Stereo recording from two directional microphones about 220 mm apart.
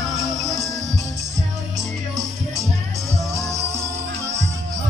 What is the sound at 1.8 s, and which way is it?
Music, centre (ahead or behind).